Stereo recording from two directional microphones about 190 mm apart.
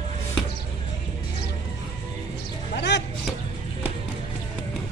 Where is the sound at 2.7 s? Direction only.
65° left (ahead or behind).